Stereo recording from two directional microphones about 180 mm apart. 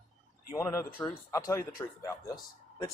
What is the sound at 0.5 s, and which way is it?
Speech, 15° left (ahead or behind).